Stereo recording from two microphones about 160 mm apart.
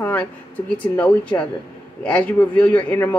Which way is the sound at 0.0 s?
10° left (ahead or behind).